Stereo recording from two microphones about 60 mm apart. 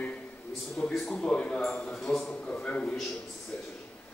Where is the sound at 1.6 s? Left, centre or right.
Centre.